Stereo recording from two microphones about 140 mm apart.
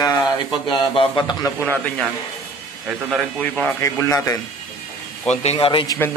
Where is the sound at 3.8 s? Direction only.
20° left (ahead or behind).